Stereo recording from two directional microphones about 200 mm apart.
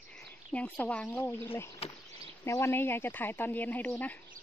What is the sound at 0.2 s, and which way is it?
Speech, 5° left (ahead or behind).